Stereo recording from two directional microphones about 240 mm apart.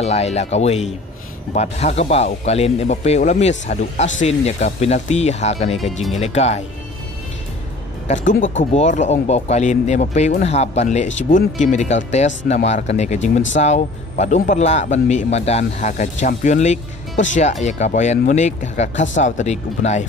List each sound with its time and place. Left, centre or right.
0.0 s speech: left
8.7 s speech: left